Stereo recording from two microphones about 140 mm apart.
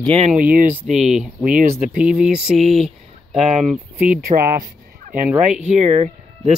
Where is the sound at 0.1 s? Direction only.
50° right (ahead or behind).